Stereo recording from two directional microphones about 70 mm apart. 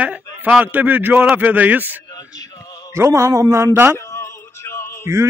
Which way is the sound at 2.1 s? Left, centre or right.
Left.